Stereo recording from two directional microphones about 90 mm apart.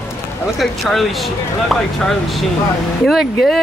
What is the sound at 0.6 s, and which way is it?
Speech, centre (ahead or behind).